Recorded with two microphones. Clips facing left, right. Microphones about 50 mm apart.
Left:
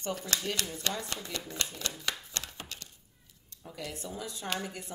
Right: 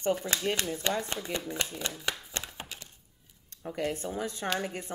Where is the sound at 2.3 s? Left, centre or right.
Right.